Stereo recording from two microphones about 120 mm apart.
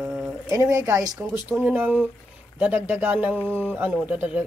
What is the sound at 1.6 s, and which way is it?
Speech, 15° right (ahead or behind).